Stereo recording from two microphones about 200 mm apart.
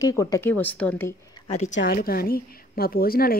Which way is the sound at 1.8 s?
50° left (ahead or behind).